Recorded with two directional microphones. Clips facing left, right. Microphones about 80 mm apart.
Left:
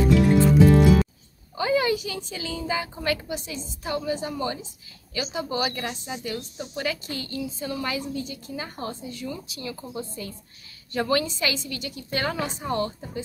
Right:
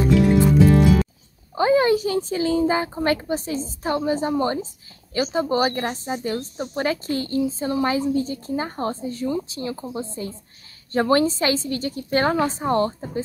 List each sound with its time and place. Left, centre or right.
0.5 s music: centre
1.5 s speech: right